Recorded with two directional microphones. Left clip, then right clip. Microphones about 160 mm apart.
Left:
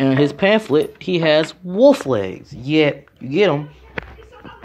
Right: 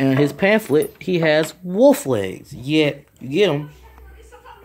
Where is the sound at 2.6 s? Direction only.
15° right (ahead or behind).